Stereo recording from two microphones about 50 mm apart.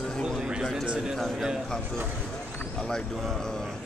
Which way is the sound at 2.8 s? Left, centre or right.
Centre.